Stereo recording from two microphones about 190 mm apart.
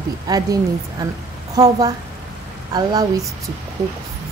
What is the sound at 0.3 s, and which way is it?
Speech, 20° right (ahead or behind).